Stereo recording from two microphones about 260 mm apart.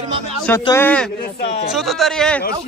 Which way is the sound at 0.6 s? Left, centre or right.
Centre.